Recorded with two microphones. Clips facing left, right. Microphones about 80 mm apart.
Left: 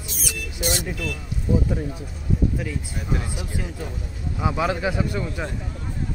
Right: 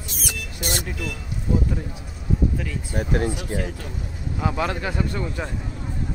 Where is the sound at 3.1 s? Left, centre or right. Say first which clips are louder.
Right 7 dB; right.